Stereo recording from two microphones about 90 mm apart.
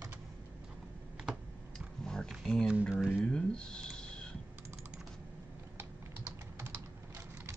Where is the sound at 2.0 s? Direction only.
5° left (ahead or behind).